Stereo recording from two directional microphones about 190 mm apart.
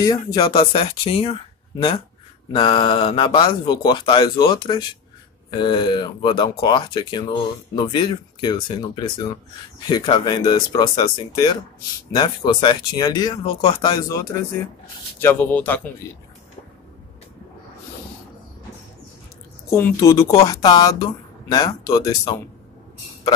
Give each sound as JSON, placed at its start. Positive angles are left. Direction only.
{"t": 0.0, "sound": "speech", "side_deg": 20}
{"t": 19.7, "sound": "speech", "side_deg": 15}